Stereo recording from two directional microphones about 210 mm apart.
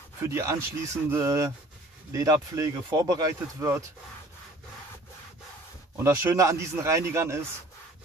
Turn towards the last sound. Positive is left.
turn(degrees=-15)  # may be behind; listen again after turning